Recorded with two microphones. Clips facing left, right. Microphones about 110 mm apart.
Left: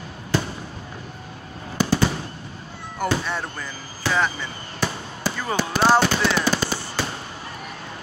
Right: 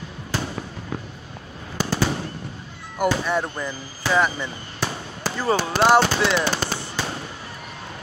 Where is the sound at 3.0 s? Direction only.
10° right (ahead or behind).